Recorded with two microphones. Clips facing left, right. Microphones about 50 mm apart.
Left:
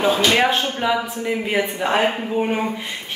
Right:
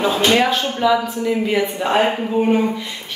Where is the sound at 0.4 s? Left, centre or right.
Left.